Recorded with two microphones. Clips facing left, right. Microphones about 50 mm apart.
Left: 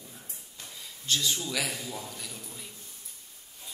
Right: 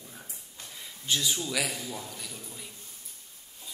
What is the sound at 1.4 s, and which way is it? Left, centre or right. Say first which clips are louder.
Speech: right 1 dB; centre.